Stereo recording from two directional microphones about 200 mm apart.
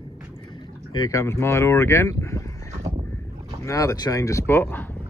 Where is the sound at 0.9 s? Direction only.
15° left (ahead or behind).